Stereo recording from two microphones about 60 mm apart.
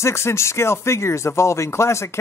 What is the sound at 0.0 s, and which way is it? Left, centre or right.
Speech, left.